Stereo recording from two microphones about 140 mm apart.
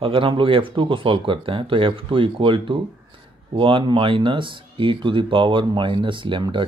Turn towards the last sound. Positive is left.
turn(degrees=-35)  # may be behind; listen again after turning